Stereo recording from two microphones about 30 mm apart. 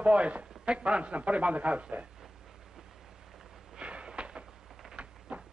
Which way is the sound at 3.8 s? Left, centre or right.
Right.